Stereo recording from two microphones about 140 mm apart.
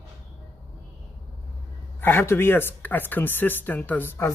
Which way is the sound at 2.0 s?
15° left (ahead or behind).